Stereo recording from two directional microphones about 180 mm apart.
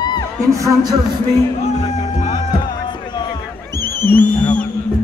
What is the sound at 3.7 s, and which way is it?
Music, 10° left (ahead or behind).